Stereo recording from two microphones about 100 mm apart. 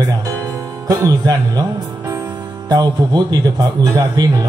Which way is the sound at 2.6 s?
40° right (ahead or behind).